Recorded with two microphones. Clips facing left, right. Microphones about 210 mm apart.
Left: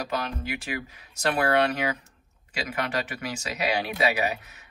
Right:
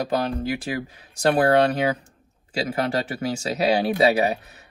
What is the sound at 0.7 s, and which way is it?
Speech, 35° right (ahead or behind).